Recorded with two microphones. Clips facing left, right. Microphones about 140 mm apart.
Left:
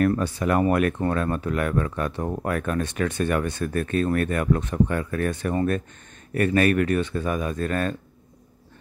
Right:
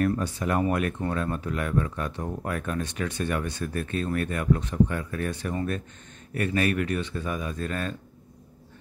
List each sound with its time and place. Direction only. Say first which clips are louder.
0.0 s speech: left 4 dB; 70° left (ahead or behind); by 7.9 s 55° left (ahead or behind)